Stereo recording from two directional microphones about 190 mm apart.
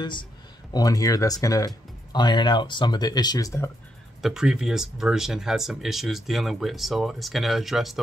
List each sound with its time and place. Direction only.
0.7 s speech: 20° left (ahead or behind)
4.2 s speech: centre (ahead or behind)